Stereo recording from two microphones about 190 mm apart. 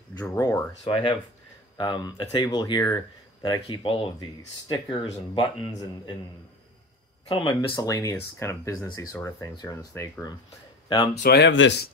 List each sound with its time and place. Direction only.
0.2 s speech: 15° left (ahead or behind)
0.8 s speech: 30° left (ahead or behind)
7.2 s speech: 25° left (ahead or behind)
11.2 s speech: 65° left (ahead or behind)